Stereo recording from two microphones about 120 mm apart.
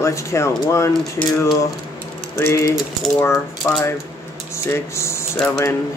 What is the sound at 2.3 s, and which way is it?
Speech, 25° left (ahead or behind).